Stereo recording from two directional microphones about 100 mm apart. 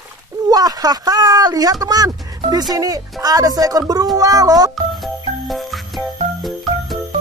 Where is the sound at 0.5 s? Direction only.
40° right (ahead or behind).